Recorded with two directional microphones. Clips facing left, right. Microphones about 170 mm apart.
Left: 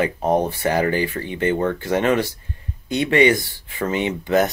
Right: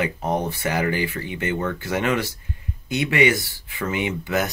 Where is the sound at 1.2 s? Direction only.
15° right (ahead or behind).